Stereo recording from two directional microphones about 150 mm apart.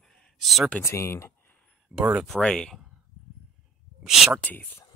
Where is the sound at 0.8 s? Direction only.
20° left (ahead or behind).